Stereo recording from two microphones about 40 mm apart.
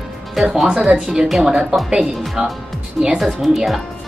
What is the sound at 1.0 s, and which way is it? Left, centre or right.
Speech, centre.